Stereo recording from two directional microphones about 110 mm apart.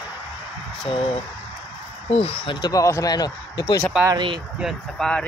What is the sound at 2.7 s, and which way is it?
Speech, 30° left (ahead or behind).